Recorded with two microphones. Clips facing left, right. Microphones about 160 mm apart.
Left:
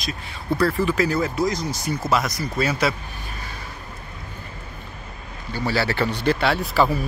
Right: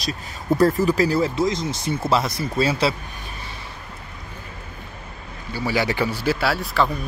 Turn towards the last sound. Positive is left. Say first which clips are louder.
# left 2 dB
turn(degrees=0)  # may be behind; listen again after turning